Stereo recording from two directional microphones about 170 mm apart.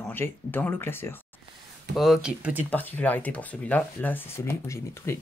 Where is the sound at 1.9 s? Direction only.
Centre (ahead or behind).